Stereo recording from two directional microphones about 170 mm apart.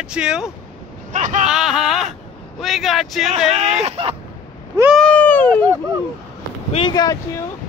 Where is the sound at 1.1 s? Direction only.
45° right (ahead or behind).